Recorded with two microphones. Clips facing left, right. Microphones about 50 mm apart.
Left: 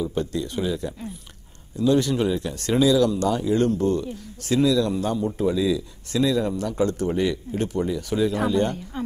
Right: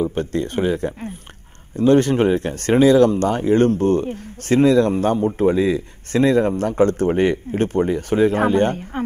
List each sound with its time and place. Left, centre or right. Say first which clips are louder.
0.0 s speech: right 5 dB; right